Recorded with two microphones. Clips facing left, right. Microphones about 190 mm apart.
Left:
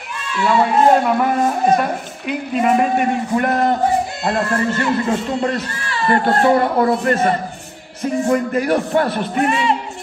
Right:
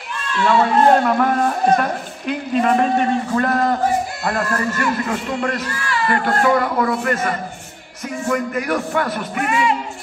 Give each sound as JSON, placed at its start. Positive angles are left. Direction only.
{"t": 0.3, "sound": "a man's voice", "side_deg": 5}